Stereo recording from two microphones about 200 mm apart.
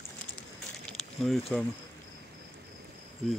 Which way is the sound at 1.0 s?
5° left (ahead or behind).